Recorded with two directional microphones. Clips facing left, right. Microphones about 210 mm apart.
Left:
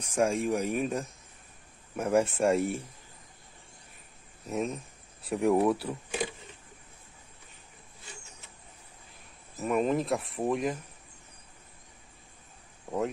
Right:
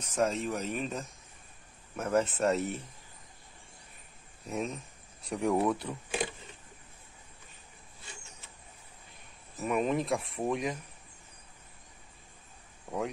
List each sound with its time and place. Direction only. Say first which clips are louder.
0.0 s speech: left 3 dB; 10° left (ahead or behind)
4.5 s speech: left 3 dB; 5° left (ahead or behind)
9.6 s speech: left 2 dB; centre (ahead or behind)